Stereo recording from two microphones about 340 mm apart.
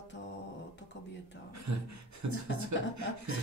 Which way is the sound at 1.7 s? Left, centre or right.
Right.